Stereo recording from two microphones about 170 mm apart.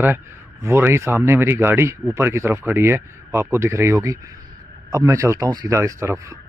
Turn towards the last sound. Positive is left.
turn(degrees=-15)  # may be behind; listen again after turning